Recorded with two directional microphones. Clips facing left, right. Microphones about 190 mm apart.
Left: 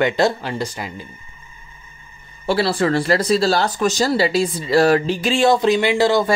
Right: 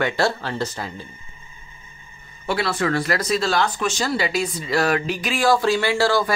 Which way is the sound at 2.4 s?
30° left (ahead or behind).